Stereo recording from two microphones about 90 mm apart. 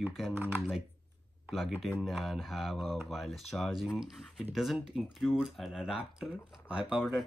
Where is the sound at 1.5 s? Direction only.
Centre (ahead or behind).